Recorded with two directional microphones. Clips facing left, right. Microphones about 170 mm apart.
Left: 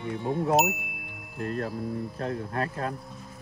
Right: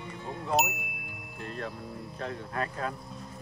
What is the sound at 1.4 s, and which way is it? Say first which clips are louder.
Speech: left 7 dB; 45° left (ahead or behind).